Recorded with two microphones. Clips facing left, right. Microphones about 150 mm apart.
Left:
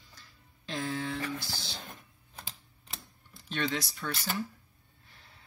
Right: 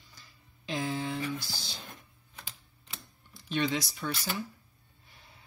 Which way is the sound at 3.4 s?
10° right (ahead or behind).